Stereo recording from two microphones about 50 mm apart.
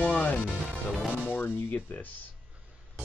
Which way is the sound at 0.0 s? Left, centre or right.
Left.